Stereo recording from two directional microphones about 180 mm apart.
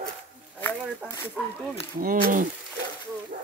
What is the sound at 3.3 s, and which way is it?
Snake, 45° right (ahead or behind).